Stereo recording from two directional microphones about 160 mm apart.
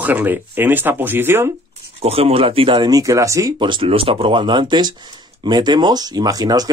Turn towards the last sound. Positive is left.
turn(degrees=-25)  # may be behind; listen again after turning